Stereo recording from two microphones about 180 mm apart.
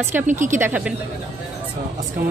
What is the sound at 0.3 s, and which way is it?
Speech, 45° right (ahead or behind).